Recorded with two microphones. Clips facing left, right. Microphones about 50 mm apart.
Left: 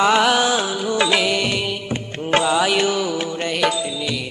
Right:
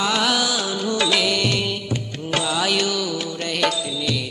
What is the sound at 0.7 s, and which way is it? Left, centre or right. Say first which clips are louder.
Music: left 2 dB; centre.